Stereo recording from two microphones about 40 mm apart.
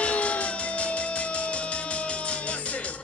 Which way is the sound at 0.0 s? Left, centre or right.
Left.